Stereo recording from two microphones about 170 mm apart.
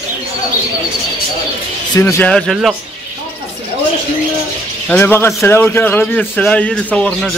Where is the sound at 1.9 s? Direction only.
15° left (ahead or behind).